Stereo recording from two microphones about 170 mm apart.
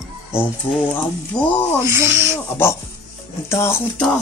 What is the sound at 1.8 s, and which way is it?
Speech, 15° right (ahead or behind).